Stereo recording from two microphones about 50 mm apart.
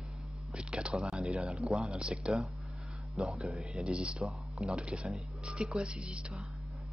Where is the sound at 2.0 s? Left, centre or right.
Centre.